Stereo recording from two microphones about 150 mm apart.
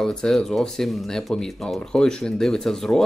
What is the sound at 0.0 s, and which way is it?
Speech, 5° left (ahead or behind).